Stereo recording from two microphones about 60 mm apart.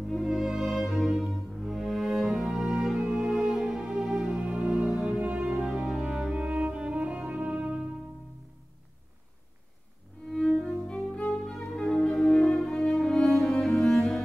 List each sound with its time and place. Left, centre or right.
0.0 s music: centre
4.9 s music: centre
5.2 s music: right
10.6 s music: centre